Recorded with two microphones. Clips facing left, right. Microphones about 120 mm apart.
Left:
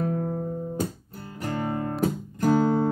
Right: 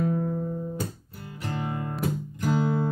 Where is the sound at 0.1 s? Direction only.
45° left (ahead or behind).